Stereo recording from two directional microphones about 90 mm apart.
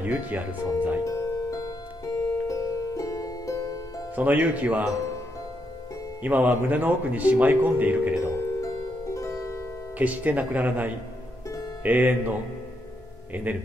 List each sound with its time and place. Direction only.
0.0 s speech: 20° right (ahead or behind)
1.0 s music: 40° left (ahead or behind)
4.1 s a man's voice: 15° right (ahead or behind)
6.2 s a man's voice: 15° right (ahead or behind)
8.5 s music: 35° left (ahead or behind)
9.9 s a man's voice: 15° right (ahead or behind)
13.3 s a man's voice: 15° right (ahead or behind)